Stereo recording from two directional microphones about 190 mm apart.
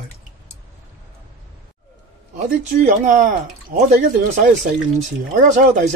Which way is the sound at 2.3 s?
40° right (ahead or behind).